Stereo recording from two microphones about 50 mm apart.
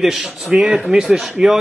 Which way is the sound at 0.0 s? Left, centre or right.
Centre.